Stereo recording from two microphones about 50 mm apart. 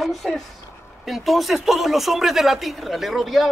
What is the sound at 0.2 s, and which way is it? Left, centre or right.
A man's voice, centre.